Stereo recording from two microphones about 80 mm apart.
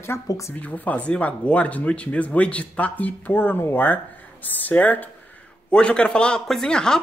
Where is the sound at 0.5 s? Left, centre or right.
Left.